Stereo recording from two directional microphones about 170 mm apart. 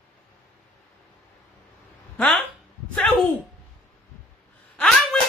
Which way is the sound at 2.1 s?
5° left (ahead or behind).